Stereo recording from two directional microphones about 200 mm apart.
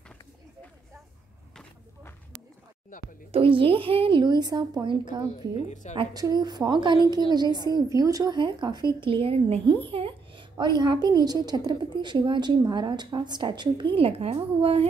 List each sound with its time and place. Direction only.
3.3 s a woman's voice: 25° right (ahead or behind)
5.7 s a woman's voice: 35° left (ahead or behind)
5.9 s a woman's voice: 20° right (ahead or behind)
9.8 s a sound: 25° right (ahead or behind)
10.8 s a woman's voice: 20° right (ahead or behind)